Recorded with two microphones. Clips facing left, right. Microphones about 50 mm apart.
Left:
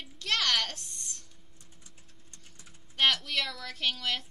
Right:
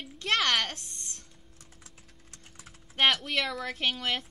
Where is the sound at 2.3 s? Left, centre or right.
Right.